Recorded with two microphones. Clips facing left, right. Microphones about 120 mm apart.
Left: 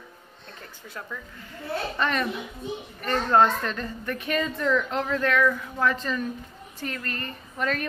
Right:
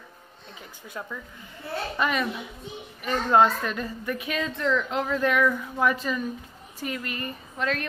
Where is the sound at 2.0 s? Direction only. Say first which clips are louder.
Right 1 dB; 5° right (ahead or behind).